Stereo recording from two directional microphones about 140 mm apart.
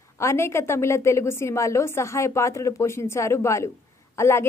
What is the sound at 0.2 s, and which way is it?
A woman's voice, 20° left (ahead or behind).